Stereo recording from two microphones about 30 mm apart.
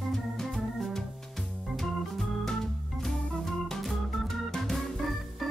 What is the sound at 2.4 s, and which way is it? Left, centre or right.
Organ, centre.